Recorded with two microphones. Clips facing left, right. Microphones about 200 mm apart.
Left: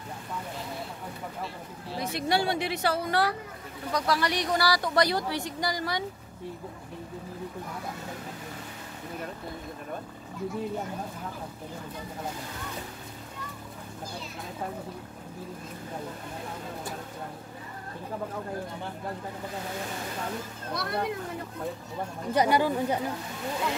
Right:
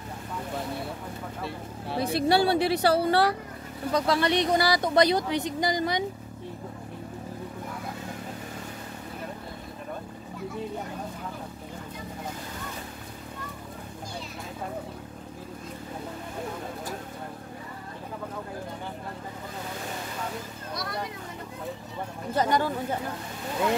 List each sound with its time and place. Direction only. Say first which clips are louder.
2.0 s a woman's voice: right 5 dB; 30° right (ahead or behind)
20.7 s children playing: left 4 dB; 55° left (ahead or behind)
22.3 s speech: left 2 dB; 15° left (ahead or behind)